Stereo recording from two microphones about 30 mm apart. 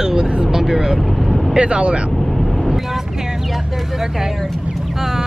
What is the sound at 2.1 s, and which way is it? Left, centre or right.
Vehicle, centre.